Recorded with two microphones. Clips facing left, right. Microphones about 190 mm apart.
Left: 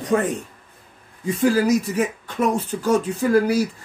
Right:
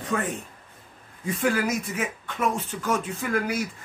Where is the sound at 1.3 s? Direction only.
35° left (ahead or behind).